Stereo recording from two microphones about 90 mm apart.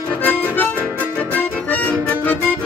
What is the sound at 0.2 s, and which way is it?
Harmonica, 20° left (ahead or behind).